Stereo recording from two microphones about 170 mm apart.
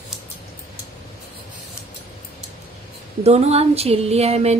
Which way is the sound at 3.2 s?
40° right (ahead or behind).